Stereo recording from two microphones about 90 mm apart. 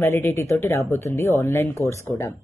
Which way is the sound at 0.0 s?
35° left (ahead or behind).